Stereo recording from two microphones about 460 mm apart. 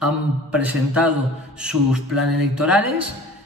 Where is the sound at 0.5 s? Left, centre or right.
Centre.